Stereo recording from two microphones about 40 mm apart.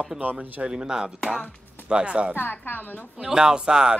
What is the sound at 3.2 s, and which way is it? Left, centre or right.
Speech, centre.